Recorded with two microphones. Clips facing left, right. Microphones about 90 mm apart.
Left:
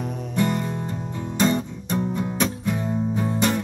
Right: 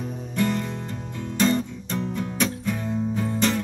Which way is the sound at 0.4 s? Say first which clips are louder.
Left 1 dB; 15° left (ahead or behind).